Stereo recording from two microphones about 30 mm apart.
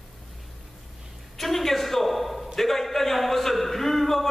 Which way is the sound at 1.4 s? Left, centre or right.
Centre.